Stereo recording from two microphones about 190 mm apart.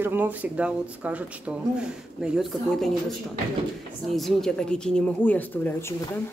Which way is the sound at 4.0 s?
Centre (ahead or behind).